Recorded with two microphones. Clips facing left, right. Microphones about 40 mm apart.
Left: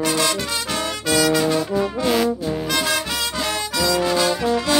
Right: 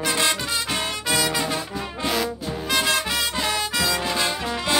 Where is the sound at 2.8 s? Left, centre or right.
Centre.